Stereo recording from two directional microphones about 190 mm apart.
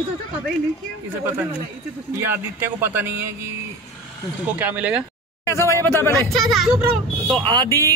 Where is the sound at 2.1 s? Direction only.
10° right (ahead or behind).